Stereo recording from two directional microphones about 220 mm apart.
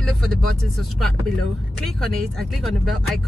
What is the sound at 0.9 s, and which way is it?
Speech, centre (ahead or behind).